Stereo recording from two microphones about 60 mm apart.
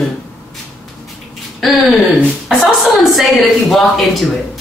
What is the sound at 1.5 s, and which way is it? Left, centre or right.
Speech, centre.